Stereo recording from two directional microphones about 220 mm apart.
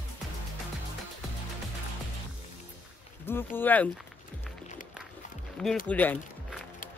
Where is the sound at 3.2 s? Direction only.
10° left (ahead or behind).